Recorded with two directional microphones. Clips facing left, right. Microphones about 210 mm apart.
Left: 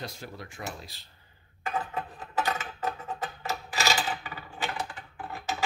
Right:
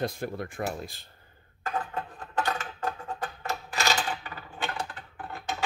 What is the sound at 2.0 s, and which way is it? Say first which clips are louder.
Music: even; 5° left (ahead or behind).